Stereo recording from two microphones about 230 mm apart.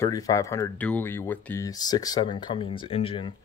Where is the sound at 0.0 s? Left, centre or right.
Centre.